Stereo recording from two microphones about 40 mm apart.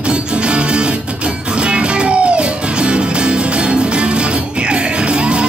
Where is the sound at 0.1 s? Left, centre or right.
Right.